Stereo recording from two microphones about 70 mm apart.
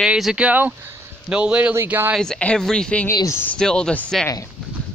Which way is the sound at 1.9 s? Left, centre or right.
Right.